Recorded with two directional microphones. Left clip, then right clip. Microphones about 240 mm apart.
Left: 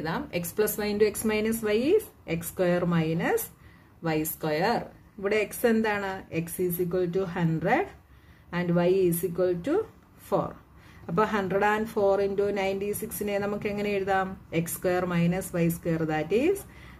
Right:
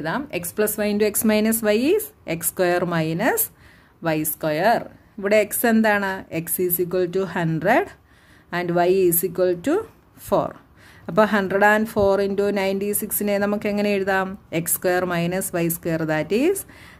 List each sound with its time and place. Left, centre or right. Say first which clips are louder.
0.0 s speech: right 5 dB; right